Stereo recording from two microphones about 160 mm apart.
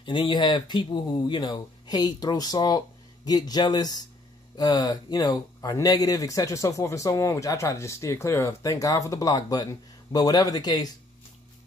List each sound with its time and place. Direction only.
0.0 s speech: 30° left (ahead or behind)